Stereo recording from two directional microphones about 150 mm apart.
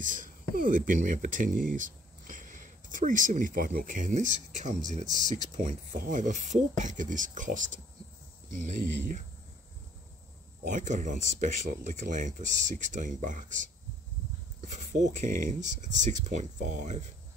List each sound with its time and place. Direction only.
0.0 s speech: 60° right (ahead or behind)
10.6 s speech: 55° right (ahead or behind)